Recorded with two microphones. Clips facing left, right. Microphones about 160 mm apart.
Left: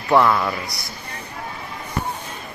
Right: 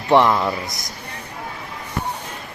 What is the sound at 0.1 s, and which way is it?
Speech, 20° right (ahead or behind).